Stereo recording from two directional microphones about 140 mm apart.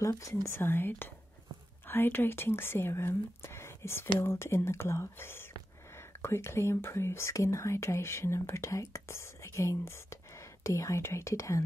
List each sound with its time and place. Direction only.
0.0 s speech: 20° left (ahead or behind)